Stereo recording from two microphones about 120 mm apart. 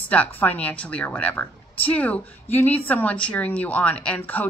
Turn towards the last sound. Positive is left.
turn(degrees=15)  # may be behind; listen again after turning